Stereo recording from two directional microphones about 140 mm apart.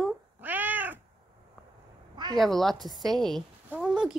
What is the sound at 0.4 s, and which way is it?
Cat, 10° right (ahead or behind).